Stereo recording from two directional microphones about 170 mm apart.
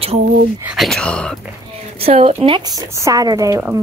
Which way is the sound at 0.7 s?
5° left (ahead or behind).